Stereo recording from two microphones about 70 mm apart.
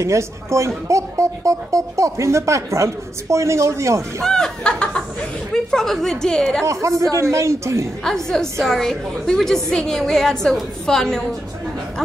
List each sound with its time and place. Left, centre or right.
0.0 s speech: right
4.2 s a woman's voice: centre
6.6 s speech: right
8.0 s a woman's voice: centre